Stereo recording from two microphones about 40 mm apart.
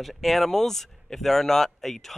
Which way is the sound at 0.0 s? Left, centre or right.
Centre.